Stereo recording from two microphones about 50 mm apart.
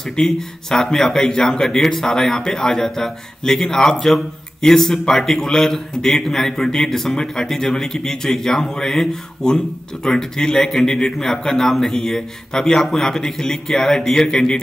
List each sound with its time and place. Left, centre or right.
0.1 s speech: centre